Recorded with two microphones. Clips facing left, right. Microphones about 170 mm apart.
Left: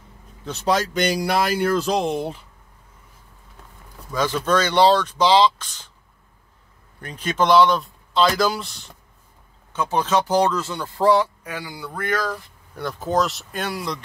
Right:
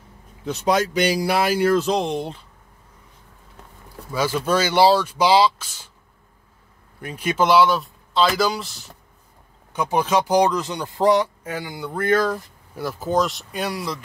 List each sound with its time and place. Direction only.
1.0 s speech: 5° right (ahead or behind)
4.1 s speech: 10° right (ahead or behind)
7.0 s speech: 10° right (ahead or behind)
9.7 s speech: 15° right (ahead or behind)
12.7 s speech: centre (ahead or behind)